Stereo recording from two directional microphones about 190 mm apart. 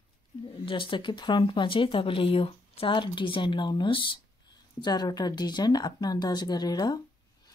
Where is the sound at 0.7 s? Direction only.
25° left (ahead or behind).